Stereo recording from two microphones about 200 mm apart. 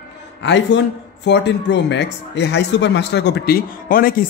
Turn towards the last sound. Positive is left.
turn(degrees=45)  # may be behind; listen again after turning